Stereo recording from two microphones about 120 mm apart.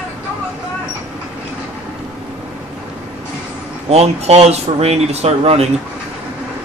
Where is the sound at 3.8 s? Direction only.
60° right (ahead or behind).